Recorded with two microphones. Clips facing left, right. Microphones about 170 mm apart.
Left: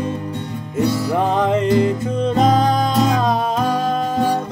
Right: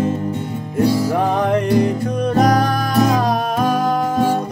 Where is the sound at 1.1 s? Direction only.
20° left (ahead or behind).